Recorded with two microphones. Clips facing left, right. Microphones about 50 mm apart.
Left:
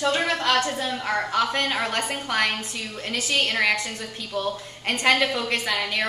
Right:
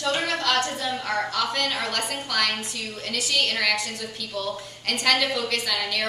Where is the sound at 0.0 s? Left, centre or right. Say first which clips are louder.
Left 2 dB; left.